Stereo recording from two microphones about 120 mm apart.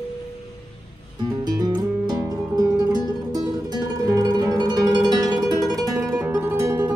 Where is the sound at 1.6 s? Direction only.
35° right (ahead or behind).